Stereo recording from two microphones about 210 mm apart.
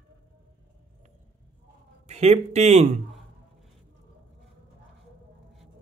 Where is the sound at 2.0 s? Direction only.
30° right (ahead or behind).